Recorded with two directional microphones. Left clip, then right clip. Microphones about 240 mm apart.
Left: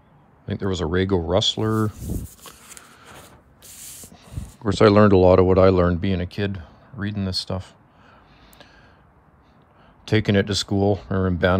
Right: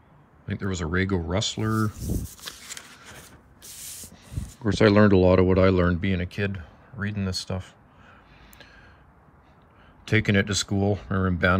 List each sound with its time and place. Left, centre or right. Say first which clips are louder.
0.5 s speech: left 5 dB; centre
4.6 s speech: left 4 dB; left
10.0 s speech: left 3 dB; centre